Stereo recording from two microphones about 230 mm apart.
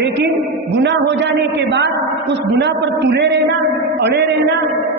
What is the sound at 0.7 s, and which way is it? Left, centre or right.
Speech, right.